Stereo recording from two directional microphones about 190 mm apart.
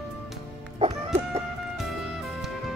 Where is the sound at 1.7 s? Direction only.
Centre (ahead or behind).